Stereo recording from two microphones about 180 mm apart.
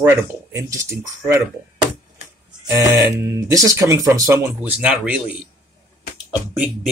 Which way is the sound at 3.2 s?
15° right (ahead or behind).